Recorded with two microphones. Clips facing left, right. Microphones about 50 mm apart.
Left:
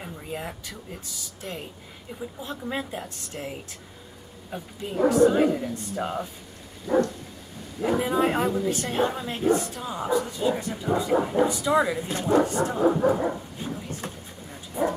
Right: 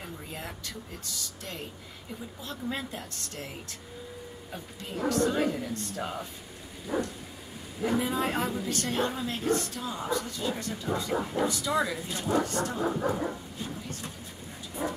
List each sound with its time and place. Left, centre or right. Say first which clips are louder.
0.0 s speech: left 5 dB; centre
2.7 s speech: left 4 dB; centre
6.9 s dog: left 9 dB; centre
7.8 s speech: left 5 dB; centre